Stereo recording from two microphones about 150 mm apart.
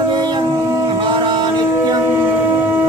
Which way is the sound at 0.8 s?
30° right (ahead or behind).